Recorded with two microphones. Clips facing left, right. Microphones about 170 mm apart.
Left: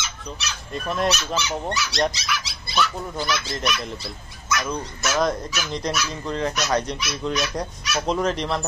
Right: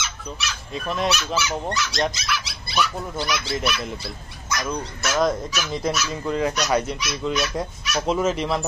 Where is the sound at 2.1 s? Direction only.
50° right (ahead or behind).